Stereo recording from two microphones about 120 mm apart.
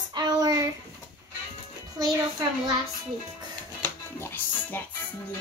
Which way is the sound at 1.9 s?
35° right (ahead or behind).